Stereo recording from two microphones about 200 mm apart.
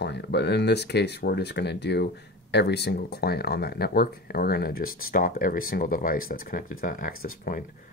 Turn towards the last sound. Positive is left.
turn(degrees=45)  # may be behind; listen again after turning